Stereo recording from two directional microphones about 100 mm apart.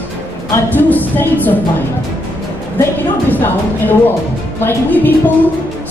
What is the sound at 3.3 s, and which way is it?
A woman's voice, 20° left (ahead or behind).